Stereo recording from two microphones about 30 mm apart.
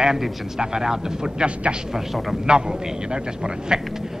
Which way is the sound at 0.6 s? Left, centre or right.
Right.